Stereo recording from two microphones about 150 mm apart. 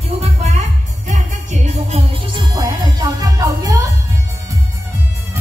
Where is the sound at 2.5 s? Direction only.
25° right (ahead or behind).